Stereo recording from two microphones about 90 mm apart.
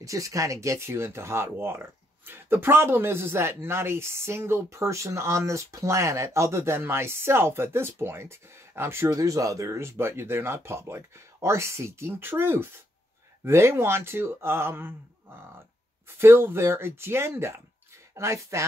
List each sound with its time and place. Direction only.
0.0 s speech: 35° right (ahead or behind)
16.2 s speech: 25° right (ahead or behind)